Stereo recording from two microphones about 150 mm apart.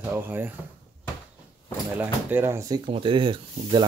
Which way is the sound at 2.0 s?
15° right (ahead or behind).